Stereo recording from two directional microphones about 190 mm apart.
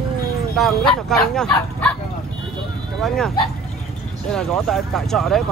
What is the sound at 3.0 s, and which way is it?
Speech, centre (ahead or behind).